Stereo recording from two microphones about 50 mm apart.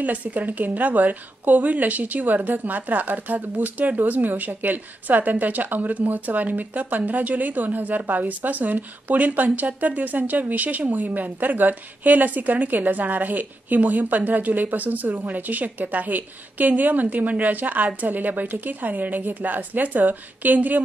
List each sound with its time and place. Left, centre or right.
0.0 s a woman's voice: right